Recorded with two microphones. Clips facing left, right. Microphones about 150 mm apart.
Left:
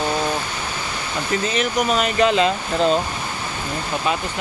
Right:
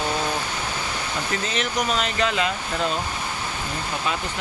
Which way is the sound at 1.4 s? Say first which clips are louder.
Left 5 dB; 5° left (ahead or behind).